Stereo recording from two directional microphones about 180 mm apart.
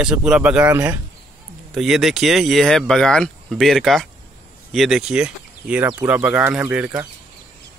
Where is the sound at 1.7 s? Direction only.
Centre (ahead or behind).